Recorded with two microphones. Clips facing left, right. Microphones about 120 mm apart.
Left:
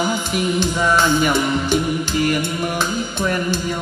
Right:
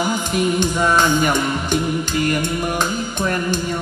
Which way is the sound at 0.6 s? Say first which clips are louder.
Left 1 dB; 15° right (ahead or behind).